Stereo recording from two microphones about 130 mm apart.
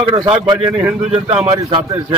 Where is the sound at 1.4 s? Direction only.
35° right (ahead or behind).